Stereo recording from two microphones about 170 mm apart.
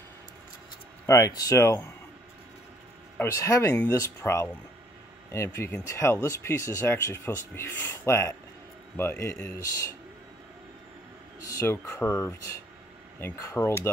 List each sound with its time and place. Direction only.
1.0 s speech: 20° left (ahead or behind)
3.2 s speech: 20° left (ahead or behind)
11.4 s speech: 15° left (ahead or behind)